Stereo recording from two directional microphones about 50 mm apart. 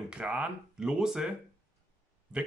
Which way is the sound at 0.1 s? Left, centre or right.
Right.